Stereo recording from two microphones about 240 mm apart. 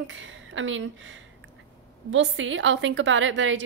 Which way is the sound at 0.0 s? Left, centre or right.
Right.